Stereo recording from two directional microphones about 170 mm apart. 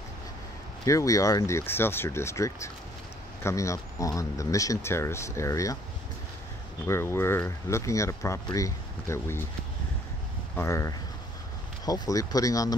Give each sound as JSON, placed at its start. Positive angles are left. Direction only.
{"t": 0.8, "sound": "speech", "side_deg": 20}
{"t": 6.9, "sound": "speech", "side_deg": 15}
{"t": 10.5, "sound": "speech", "side_deg": 15}